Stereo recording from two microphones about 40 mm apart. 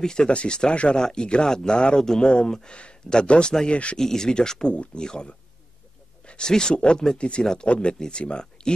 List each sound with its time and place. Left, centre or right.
0.0 s speech: centre
4.0 s speech: centre
7.2 s speech: left